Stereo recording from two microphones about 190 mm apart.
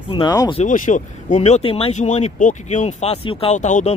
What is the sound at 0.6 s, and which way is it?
Speech, 40° left (ahead or behind).